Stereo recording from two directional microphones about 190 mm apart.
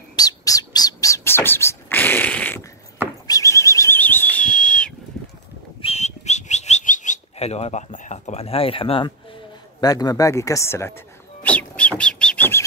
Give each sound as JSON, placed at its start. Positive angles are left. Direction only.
{"t": 0.1, "sound": "bird", "side_deg": 20}
{"t": 3.3, "sound": "a sound", "side_deg": 15}
{"t": 5.8, "sound": "bird", "side_deg": 35}